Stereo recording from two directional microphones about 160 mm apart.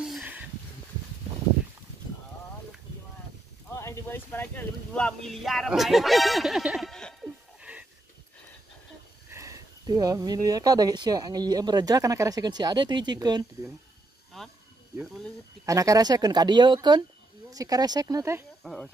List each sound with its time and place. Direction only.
0.0 s a sound: 10° right (ahead or behind)
3.7 s a sound: 15° left (ahead or behind); by 7.8 s 5° right (ahead or behind)
9.3 s speech: 20° right (ahead or behind)
14.3 s speech: centre (ahead or behind)
15.6 s speech: 20° right (ahead or behind)
18.6 s speech: centre (ahead or behind)